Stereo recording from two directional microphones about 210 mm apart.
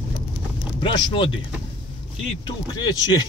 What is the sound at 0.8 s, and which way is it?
Speech, 20° left (ahead or behind).